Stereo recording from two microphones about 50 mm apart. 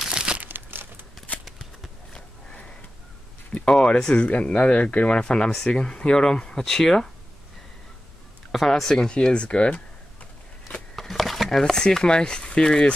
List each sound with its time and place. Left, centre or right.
0.0 s crumpling: centre
0.4 s crumpling: right
3.5 s speech: centre
8.5 s speech: centre
9.1 s speech: centre
11.0 s speech: centre